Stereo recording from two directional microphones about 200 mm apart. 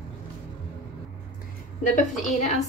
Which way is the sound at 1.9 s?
40° left (ahead or behind).